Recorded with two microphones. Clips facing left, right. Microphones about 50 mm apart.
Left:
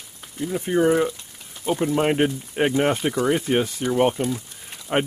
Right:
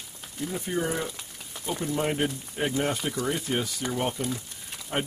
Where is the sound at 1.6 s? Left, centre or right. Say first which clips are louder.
Left 8 dB; left.